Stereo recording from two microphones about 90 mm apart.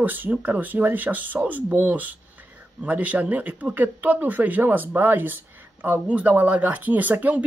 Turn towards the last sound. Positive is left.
turn(degrees=-15)  # may be behind; listen again after turning